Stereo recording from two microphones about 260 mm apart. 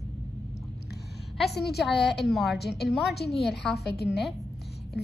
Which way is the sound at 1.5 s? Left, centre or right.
Left.